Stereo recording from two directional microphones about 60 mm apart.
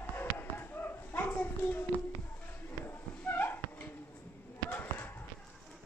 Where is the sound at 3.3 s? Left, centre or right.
Left.